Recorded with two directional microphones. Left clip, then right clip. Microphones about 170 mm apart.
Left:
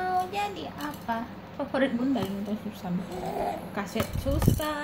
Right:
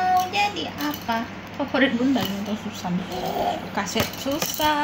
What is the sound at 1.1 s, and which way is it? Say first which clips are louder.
Child singing: right 6 dB; 60° left (ahead or behind).